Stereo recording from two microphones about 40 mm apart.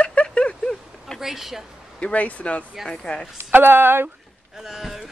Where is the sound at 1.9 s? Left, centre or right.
Left.